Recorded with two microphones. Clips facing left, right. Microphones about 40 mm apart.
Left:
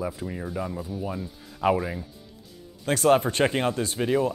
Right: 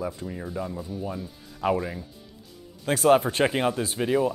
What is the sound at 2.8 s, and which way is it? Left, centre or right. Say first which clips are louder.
Speech: right 1 dB; centre.